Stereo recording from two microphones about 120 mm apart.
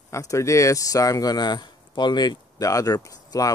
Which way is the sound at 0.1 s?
25° left (ahead or behind).